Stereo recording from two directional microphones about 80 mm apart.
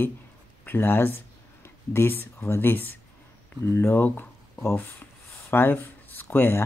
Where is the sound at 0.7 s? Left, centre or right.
Left.